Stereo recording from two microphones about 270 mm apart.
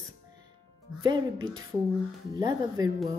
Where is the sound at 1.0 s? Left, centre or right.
Centre.